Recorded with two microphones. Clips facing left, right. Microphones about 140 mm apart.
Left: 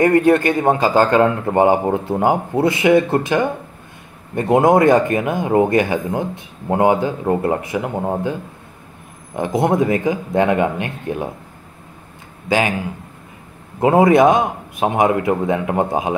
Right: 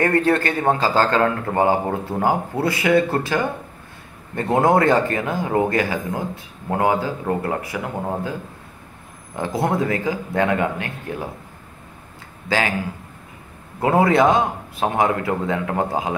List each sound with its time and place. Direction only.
0.0 s speech: 15° left (ahead or behind)
12.4 s speech: 20° left (ahead or behind)
13.7 s speech: 20° left (ahead or behind)